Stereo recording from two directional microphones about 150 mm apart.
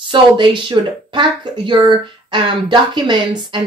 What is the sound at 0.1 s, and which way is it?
A woman's voice, 30° right (ahead or behind).